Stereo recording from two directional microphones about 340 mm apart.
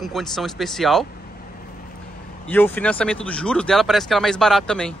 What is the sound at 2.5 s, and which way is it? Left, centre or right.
Speech, centre.